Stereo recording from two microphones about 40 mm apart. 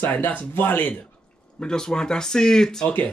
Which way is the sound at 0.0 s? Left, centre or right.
Left.